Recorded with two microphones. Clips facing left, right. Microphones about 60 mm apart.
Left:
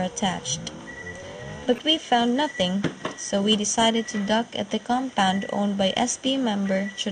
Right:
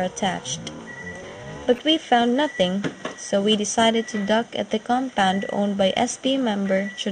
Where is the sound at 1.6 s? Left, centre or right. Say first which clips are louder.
Right 3 dB; centre.